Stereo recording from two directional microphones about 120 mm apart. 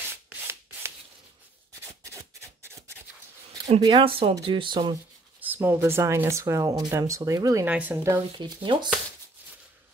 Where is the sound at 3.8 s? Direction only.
40° right (ahead or behind).